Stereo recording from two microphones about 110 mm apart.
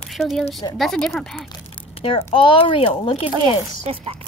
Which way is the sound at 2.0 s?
55° left (ahead or behind).